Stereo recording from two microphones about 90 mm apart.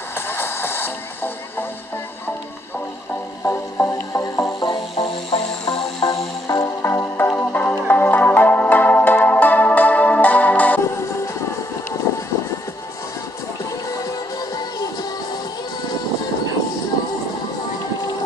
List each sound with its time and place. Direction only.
0.3 s music: 25° left (ahead or behind)
3.4 s music: 25° left (ahead or behind)
4.2 s music: 35° left (ahead or behind)
4.9 s music: 85° left
6.4 s music: 40° left (ahead or behind); by 10.8 s 15° left (ahead or behind)